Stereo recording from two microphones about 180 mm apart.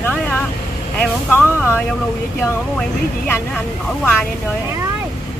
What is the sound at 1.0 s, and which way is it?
Speech, 10° left (ahead or behind).